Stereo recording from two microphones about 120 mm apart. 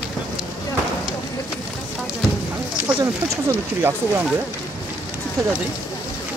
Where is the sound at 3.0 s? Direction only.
25° right (ahead or behind).